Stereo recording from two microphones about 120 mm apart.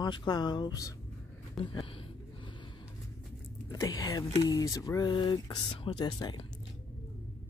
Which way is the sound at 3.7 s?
30° left (ahead or behind).